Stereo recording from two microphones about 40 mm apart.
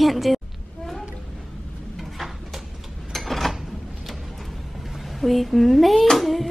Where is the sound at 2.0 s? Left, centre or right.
Centre.